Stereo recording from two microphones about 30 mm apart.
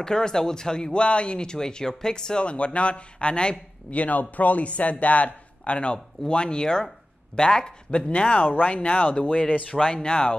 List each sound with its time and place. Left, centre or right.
0.0 s speech: left
2.4 s speech: left
3.9 s a man's voice: left
5.6 s speech: left
8.1 s a man's voice: left
9.3 s speech: left